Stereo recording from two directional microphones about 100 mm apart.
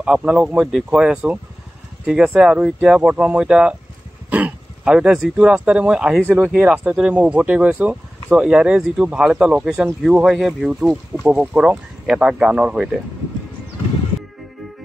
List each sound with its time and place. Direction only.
0.0 s speech: 10° right (ahead or behind)
6.2 s speech: 20° right (ahead or behind)
6.5 s speech: 10° right (ahead or behind)
10.0 s speech: 5° right (ahead or behind)